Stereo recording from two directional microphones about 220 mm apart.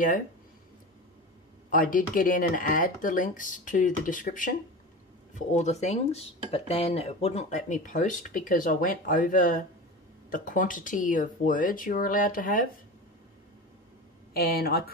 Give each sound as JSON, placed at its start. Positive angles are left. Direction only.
{"t": 1.7, "sound": "speech", "side_deg": 40}
{"t": 14.3, "sound": "speech", "side_deg": 45}